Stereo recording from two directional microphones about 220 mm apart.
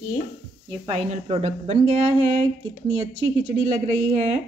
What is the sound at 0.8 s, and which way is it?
Speech, 25° right (ahead or behind).